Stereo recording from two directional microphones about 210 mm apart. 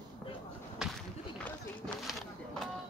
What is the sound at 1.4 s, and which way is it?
Run, centre (ahead or behind).